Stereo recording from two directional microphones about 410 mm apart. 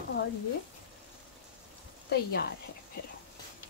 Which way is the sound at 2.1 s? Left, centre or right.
Left.